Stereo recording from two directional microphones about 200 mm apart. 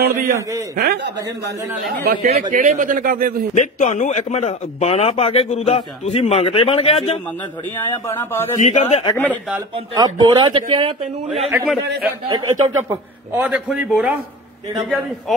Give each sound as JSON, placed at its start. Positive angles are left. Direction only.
{"t": 0.0, "sound": "a man's voice", "side_deg": -45}
{"t": 2.2, "sound": "speech", "side_deg": -30}
{"t": 3.5, "sound": "a man's voice", "side_deg": 35}
{"t": 7.7, "sound": "speech", "side_deg": 10}
{"t": 8.5, "sound": "a man's voice", "side_deg": 35}
{"t": 9.1, "sound": "speech", "side_deg": 10}
{"t": 9.9, "sound": "speech", "side_deg": -20}
{"t": 11.2, "sound": "a man's voice", "side_deg": 0}
{"t": 12.3, "sound": "a man's voice", "side_deg": -20}